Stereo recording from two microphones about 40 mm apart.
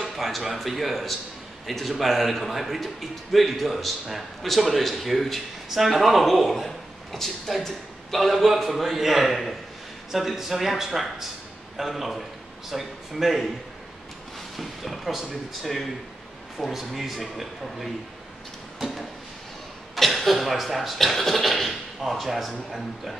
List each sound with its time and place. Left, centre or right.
0.0 s a man's voice: centre
14.6 s a man's voice: centre
18.8 s a sound: centre
20.0 s a man's voice: centre